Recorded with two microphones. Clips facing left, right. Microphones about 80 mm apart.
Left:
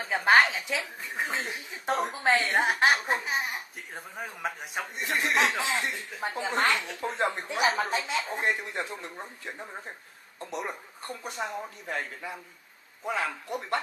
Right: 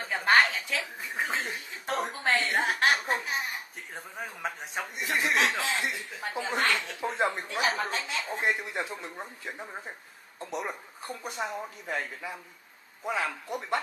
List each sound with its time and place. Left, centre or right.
0.0 s a woman's voice: centre
1.9 s speech: centre
2.2 s a woman's voice: centre
3.9 s speech: centre
5.6 s a woman's voice: centre
7.0 s speech: centre
7.4 s a woman's voice: centre
8.5 s speech: centre